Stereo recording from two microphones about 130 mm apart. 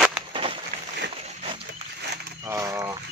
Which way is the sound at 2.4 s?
25° right (ahead or behind).